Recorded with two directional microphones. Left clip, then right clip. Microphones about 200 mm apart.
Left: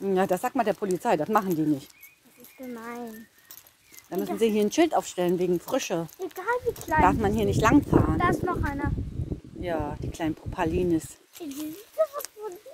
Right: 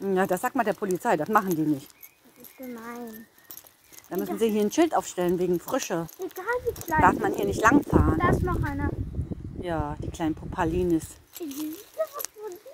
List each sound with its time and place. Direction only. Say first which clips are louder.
0.0 s speech: even; 5° right (ahead or behind)
4.4 s speech: left 1 dB; 5° right (ahead or behind)
11.3 s speech: right 2 dB; 40° right (ahead or behind)